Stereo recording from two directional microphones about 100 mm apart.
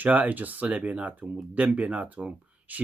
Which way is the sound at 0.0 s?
15° right (ahead or behind).